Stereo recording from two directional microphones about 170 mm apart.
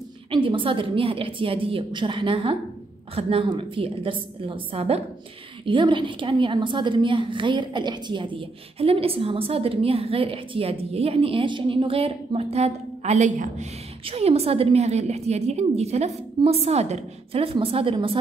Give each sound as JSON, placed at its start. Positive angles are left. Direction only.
{"t": 0.3, "sound": "a woman's voice", "side_deg": -30}